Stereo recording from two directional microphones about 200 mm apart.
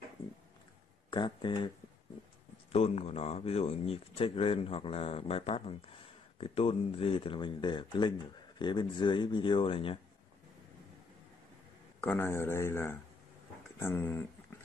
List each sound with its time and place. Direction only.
1.1 s speech: 20° left (ahead or behind)
2.7 s speech: 30° left (ahead or behind)
12.0 s speech: 10° left (ahead or behind)